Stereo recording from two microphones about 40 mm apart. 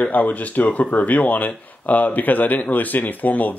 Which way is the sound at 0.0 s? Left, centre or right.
Left.